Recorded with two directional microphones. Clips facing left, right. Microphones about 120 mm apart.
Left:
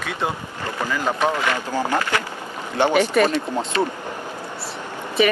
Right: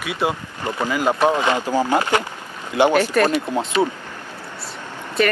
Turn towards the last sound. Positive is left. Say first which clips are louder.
# left 1 dB
turn(degrees=0)  # may be behind; listen again after turning